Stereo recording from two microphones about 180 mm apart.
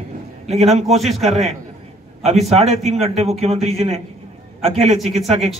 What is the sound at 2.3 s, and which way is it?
A man's voice, 35° right (ahead or behind).